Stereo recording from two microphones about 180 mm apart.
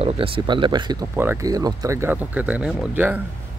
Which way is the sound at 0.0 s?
30° right (ahead or behind).